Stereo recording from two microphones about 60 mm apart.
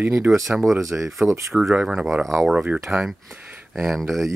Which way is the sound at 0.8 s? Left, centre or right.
Right.